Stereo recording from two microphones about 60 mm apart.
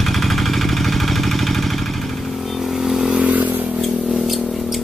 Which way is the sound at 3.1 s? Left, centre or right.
Right.